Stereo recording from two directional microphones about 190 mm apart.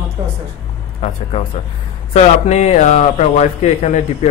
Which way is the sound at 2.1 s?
35° left (ahead or behind).